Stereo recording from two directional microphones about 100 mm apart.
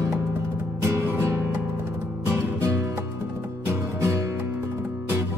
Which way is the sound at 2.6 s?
25° right (ahead or behind).